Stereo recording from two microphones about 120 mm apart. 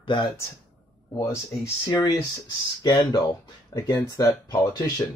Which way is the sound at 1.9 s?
40° left (ahead or behind).